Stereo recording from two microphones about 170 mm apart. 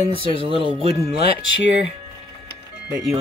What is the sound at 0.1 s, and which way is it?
Speech, 30° right (ahead or behind).